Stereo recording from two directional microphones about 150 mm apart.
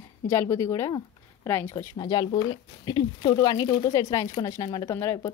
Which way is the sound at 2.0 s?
25° left (ahead or behind).